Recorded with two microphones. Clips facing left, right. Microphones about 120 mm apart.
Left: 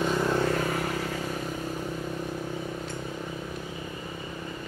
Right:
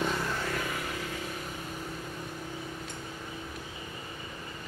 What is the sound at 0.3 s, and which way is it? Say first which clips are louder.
Vehicle: left 8 dB; 35° left (ahead or behind).